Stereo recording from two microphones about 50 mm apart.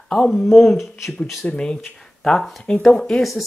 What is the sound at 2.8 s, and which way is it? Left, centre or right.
Speech, centre.